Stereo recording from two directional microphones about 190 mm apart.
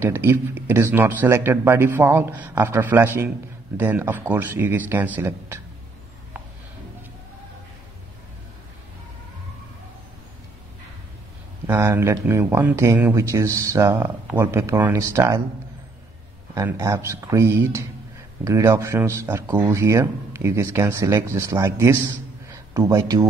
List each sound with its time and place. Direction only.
0.0 s speech: 10° right (ahead or behind)
11.6 s speech: 15° right (ahead or behind)
16.7 s a man's voice: 15° right (ahead or behind)